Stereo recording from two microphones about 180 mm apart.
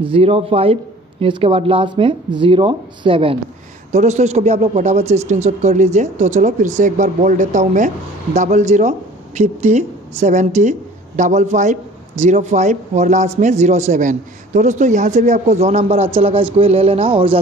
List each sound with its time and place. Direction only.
0.0 s speech: 30° right (ahead or behind)